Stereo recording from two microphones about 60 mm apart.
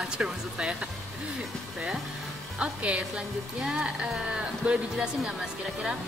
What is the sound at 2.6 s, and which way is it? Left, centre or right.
Speech, right.